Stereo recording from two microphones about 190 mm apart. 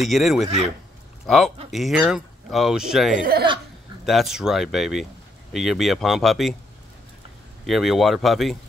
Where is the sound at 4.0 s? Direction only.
Centre (ahead or behind).